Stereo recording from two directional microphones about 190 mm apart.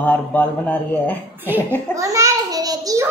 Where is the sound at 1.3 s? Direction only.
10° right (ahead or behind).